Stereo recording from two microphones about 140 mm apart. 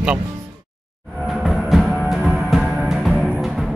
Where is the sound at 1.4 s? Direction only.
Centre (ahead or behind).